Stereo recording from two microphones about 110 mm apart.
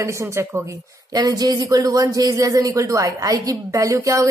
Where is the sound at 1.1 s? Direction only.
35° right (ahead or behind).